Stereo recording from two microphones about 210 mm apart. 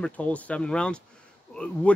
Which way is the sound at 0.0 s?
5° left (ahead or behind).